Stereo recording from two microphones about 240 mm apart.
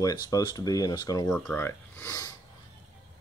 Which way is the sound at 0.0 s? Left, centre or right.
Centre.